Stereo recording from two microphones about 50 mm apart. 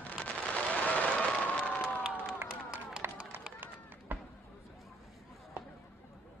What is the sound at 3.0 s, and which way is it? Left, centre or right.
Run, right.